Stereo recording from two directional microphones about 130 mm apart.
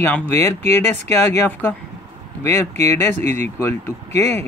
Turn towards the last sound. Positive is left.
turn(degrees=20)  # may be behind; listen again after turning